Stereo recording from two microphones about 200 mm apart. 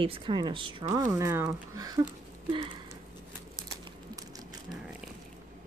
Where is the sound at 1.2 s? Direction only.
15° right (ahead or behind).